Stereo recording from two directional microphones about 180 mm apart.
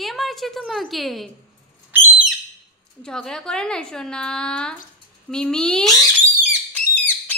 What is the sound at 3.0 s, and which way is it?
A woman's voice, 5° left (ahead or behind).